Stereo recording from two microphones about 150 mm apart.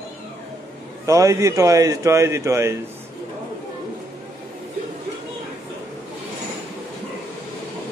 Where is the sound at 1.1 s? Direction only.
20° right (ahead or behind).